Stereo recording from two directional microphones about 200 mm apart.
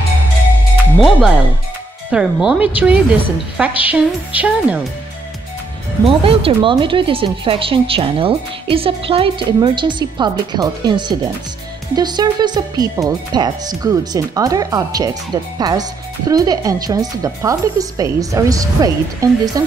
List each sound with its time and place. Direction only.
0.9 s speech: 5° right (ahead or behind)
6.0 s speech: 30° right (ahead or behind)